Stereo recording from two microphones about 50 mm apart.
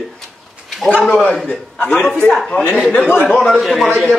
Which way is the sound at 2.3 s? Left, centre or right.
Centre.